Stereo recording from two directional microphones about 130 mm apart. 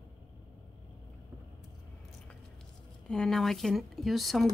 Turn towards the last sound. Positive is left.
turn(degrees=0)  # may be behind; listen again after turning